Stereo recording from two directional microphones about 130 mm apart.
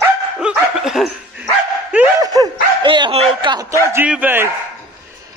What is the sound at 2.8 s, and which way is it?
Dog, 40° right (ahead or behind).